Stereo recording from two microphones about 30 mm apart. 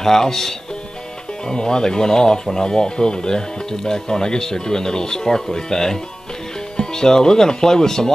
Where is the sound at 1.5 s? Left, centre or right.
Left.